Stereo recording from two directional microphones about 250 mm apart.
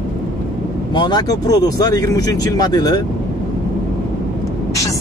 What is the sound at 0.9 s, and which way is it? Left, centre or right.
Speech, centre.